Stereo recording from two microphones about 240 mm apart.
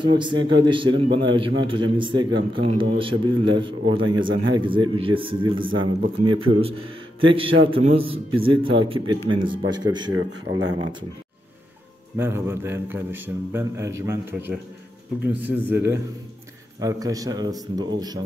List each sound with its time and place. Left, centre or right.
0.0 s a man's voice: centre
10.5 s a man's voice: right
12.2 s a man's voice: centre